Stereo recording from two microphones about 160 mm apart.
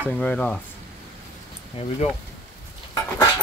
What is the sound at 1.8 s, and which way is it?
Speech, 35° left (ahead or behind).